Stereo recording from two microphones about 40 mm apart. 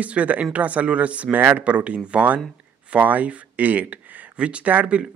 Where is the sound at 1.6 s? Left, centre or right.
Right.